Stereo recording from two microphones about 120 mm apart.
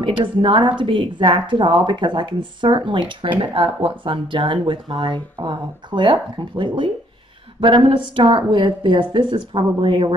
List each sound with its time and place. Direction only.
0.0 s speech: 45° right (ahead or behind)